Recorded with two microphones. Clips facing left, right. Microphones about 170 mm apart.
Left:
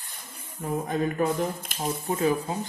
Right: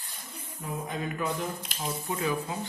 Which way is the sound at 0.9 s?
45° left (ahead or behind).